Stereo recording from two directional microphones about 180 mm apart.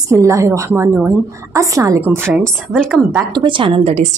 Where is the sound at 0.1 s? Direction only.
15° right (ahead or behind).